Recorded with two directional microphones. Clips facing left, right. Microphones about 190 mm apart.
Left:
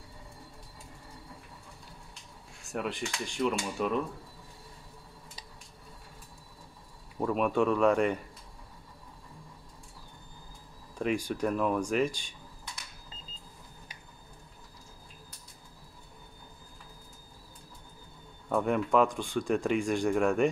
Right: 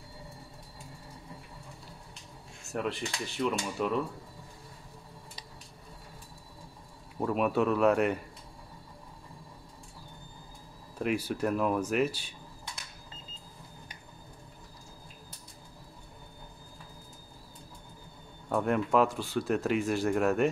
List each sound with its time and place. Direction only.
2.6 s speech: centre (ahead or behind)
7.2 s speech: 5° right (ahead or behind)
11.0 s speech: 5° right (ahead or behind)
18.5 s speech: centre (ahead or behind)